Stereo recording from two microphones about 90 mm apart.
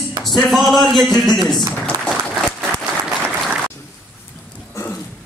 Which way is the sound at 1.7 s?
5° left (ahead or behind).